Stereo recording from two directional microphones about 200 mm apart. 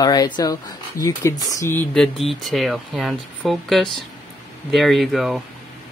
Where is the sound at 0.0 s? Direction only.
20° left (ahead or behind).